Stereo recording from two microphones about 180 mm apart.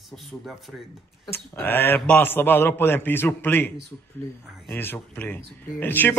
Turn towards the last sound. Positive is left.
turn(degrees=10)  # may be behind; listen again after turning